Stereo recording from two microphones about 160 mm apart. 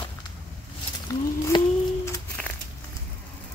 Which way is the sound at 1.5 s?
30° left (ahead or behind).